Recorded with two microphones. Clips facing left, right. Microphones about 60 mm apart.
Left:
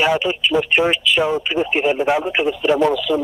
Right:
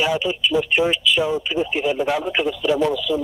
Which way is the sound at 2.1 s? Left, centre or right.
Left.